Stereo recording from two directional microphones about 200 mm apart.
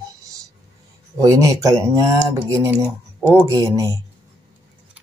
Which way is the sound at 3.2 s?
15° right (ahead or behind).